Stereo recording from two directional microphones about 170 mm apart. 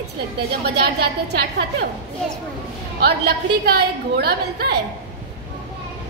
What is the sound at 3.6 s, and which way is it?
A woman's voice, 70° right (ahead or behind).